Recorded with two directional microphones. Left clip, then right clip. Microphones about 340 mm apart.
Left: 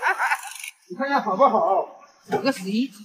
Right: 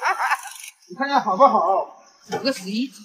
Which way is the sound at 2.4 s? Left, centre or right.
Centre.